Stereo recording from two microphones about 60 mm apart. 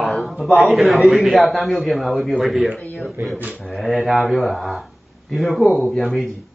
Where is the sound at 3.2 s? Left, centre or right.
Right.